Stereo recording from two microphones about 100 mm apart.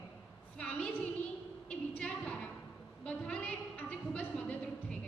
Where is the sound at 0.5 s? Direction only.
10° left (ahead or behind).